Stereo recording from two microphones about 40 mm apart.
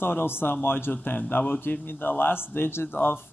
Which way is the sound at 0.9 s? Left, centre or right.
Left.